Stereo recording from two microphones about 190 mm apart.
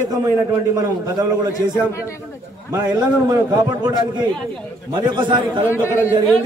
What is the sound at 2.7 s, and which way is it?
Speech, 15° right (ahead or behind).